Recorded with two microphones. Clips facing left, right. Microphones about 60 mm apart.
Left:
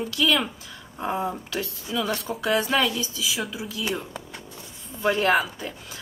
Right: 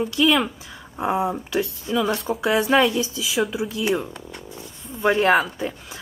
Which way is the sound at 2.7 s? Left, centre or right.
Right.